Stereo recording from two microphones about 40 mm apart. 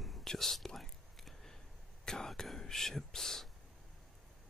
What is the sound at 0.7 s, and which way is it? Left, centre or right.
Whispering, centre.